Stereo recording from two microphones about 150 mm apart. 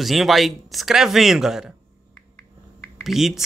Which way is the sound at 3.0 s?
Centre (ahead or behind).